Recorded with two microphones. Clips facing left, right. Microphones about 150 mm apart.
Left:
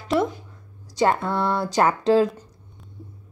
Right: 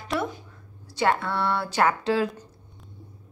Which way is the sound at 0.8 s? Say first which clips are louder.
Left 3 dB; 40° left (ahead or behind).